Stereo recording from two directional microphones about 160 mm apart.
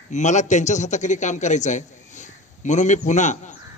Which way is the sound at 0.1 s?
50° left (ahead or behind).